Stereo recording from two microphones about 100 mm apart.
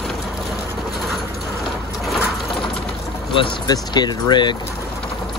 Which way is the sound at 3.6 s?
45° left (ahead or behind).